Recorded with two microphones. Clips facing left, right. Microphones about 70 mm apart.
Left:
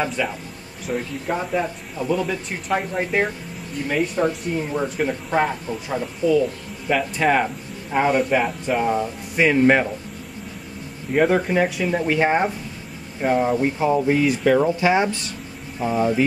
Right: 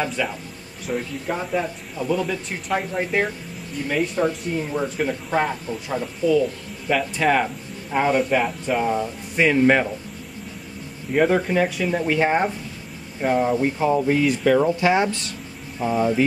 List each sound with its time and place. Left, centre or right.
0.0 s speech: centre
11.1 s speech: centre